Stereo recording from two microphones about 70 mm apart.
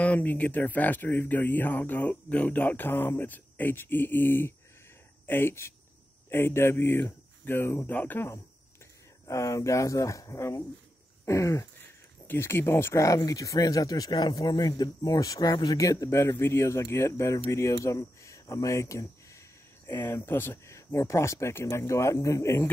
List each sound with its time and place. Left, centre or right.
0.0 s speech: left
9.3 s speech: left
12.3 s speech: left
15.8 s speech: left
19.9 s speech: left
20.7 s speech: left